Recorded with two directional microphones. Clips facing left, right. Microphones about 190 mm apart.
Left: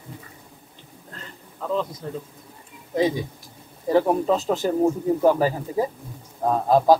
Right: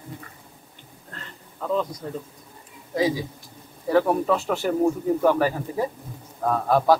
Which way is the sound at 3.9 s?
20° left (ahead or behind).